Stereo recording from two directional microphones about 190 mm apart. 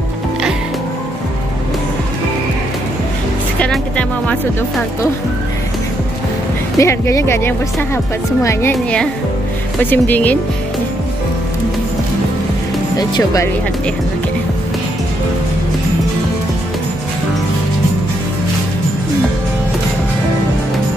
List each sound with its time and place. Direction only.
3.5 s music: 5° left (ahead or behind)
6.8 s speech: 15° left (ahead or behind)
13.1 s speech: 20° left (ahead or behind)